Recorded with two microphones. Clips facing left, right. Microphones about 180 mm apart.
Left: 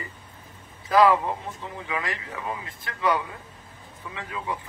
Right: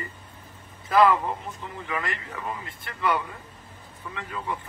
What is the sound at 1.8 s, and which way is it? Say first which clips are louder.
Speech: even; 5° left (ahead or behind).